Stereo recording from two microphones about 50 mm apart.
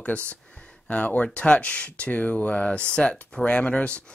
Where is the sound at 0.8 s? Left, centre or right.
Left.